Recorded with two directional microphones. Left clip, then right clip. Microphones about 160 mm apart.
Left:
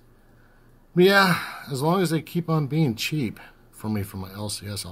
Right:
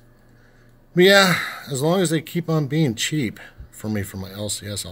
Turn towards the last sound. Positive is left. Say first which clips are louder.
# right 4 dB
turn(degrees=-20)  # may be behind; listen again after turning